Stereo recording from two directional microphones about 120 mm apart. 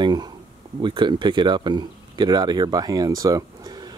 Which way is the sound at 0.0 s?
35° right (ahead or behind).